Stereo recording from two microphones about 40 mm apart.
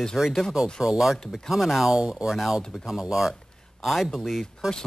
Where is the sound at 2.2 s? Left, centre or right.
Centre.